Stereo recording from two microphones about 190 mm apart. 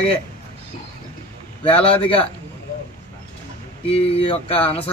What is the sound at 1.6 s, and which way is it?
Speech, 30° left (ahead or behind).